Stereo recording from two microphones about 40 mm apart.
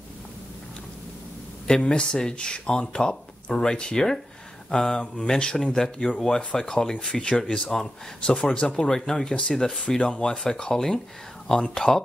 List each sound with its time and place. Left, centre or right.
1.8 s speech: left